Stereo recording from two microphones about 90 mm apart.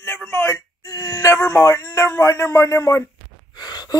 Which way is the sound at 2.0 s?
30° left (ahead or behind).